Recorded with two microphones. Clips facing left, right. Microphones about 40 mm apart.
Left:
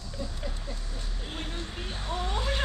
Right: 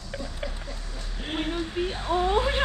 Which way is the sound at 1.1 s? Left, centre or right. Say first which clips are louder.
Right 10 dB; right.